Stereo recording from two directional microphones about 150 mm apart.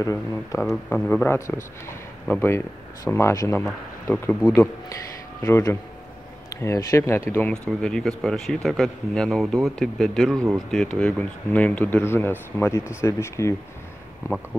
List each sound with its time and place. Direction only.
0.0 s a man's voice: 20° left (ahead or behind)
0.8 s speech: 5° left (ahead or behind)
5.4 s speech: 15° left (ahead or behind)
7.6 s a man's voice: 5° left (ahead or behind)